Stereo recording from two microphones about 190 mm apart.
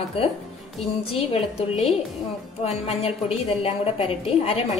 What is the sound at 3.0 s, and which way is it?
A woman's voice, 35° left (ahead or behind).